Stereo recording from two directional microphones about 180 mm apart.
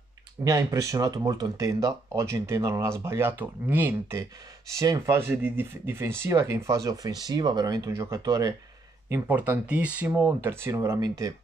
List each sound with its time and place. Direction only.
0.4 s speech: 15° right (ahead or behind)